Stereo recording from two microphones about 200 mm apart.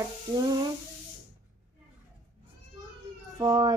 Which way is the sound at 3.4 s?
20° right (ahead or behind).